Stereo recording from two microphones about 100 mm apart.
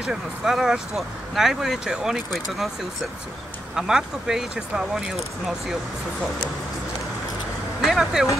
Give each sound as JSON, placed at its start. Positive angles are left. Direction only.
{"t": 0.0, "sound": "speech", "side_deg": -5}
{"t": 3.7, "sound": "speech", "side_deg": -5}
{"t": 7.8, "sound": "speech", "side_deg": 0}